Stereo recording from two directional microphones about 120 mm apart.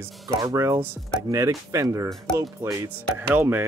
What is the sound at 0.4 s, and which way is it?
Speech, 25° right (ahead or behind).